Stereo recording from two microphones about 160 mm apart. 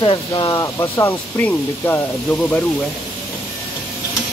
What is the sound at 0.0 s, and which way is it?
Speech, 30° left (ahead or behind).